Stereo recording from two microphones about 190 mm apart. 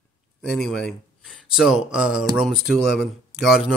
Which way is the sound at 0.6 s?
5° left (ahead or behind).